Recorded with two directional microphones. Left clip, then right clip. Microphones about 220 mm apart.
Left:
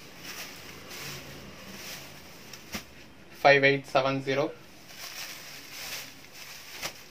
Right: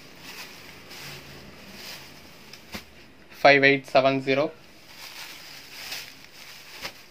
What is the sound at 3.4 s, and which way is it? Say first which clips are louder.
Speech: right 4 dB; 45° right (ahead or behind).